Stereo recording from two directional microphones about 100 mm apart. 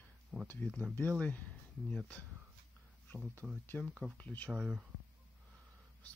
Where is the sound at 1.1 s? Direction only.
15° left (ahead or behind).